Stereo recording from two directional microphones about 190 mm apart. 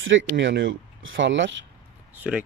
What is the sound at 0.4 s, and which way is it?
Speech, 65° right (ahead or behind).